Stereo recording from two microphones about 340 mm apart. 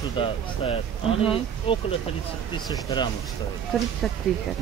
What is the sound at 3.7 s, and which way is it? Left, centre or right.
Speech, centre.